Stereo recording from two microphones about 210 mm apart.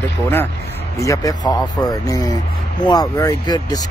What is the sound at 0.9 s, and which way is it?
Speech, 15° left (ahead or behind).